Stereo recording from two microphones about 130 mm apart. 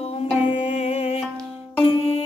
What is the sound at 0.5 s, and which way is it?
Music, 60° left (ahead or behind).